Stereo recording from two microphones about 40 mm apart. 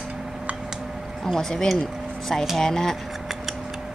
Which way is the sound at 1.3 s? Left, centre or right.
Centre.